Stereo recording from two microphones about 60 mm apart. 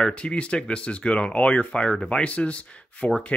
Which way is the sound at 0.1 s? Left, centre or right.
Centre.